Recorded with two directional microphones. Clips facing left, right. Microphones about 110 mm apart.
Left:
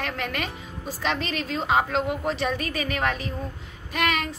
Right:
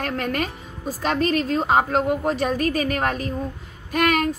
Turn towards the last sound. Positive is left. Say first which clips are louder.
# right 5 dB
turn(degrees=-50)  # may be behind; listen again after turning